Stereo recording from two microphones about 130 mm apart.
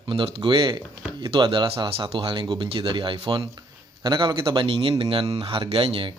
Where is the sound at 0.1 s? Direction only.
40° right (ahead or behind).